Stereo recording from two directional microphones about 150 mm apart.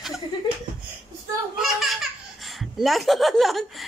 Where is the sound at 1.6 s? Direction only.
Centre (ahead or behind).